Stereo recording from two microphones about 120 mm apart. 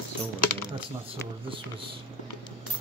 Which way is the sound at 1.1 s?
45° right (ahead or behind).